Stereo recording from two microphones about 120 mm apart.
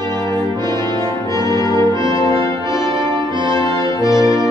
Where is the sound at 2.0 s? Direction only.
30° left (ahead or behind).